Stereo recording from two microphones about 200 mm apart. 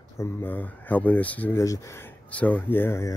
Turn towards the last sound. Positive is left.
turn(degrees=10)  # may be behind; listen again after turning